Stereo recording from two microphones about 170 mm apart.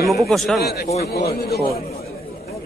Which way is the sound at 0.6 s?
70° left (ahead or behind).